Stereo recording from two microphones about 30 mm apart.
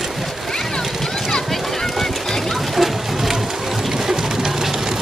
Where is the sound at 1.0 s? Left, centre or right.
Centre.